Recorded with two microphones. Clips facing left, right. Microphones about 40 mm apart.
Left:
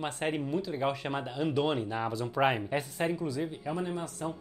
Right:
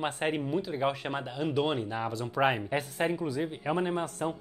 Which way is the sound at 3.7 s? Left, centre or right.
Right.